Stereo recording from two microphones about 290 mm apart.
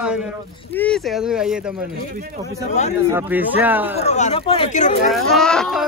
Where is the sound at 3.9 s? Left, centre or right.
Left.